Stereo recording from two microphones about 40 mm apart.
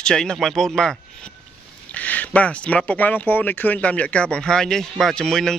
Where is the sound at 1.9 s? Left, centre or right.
Left.